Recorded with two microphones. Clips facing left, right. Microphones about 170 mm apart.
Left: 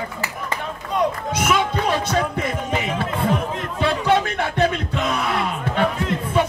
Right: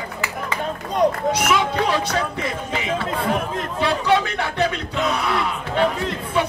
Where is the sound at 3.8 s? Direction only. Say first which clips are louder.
Even; 50° left (ahead or behind).